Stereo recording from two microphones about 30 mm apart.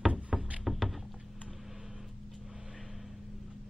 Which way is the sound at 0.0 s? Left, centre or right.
Right.